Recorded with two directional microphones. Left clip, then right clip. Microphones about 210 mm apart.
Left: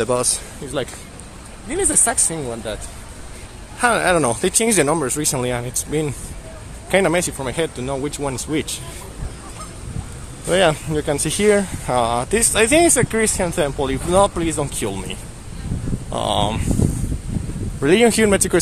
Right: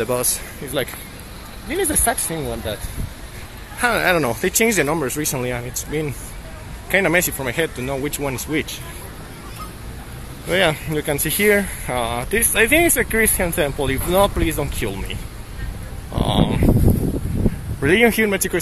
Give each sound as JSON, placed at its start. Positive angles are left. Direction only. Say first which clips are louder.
{"t": 0.0, "sound": "speech", "louder": "left 2 dB", "side_deg": 15}
{"t": 0.7, "sound": "speech", "louder": "right 1 dB", "side_deg": 5}
{"t": 3.8, "sound": "speech", "louder": "left 1 dB", "side_deg": 10}
{"t": 6.9, "sound": "speech", "louder": "even", "side_deg": 10}
{"t": 10.5, "sound": "speech", "louder": "left 2 dB", "side_deg": 15}
{"t": 16.1, "sound": "a sound", "louder": "left 1 dB", "side_deg": 15}
{"t": 17.8, "sound": "speech", "louder": "left 1 dB", "side_deg": 15}